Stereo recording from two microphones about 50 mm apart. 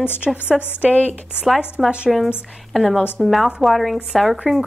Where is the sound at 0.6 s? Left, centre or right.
Left.